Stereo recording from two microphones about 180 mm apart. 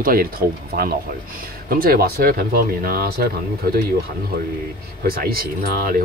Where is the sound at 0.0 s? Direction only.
55° right (ahead or behind).